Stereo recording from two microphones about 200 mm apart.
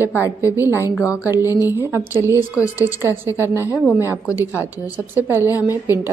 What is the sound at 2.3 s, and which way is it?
Speech, 15° left (ahead or behind).